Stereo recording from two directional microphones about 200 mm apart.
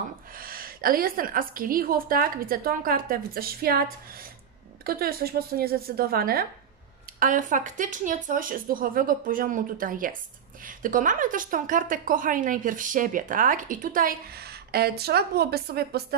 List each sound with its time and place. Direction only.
0.4 s a woman's voice: 45° right (ahead or behind)